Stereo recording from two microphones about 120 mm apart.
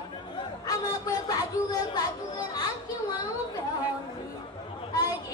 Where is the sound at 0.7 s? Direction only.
30° left (ahead or behind).